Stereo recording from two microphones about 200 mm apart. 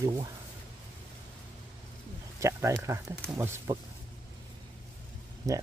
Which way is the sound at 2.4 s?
15° right (ahead or behind).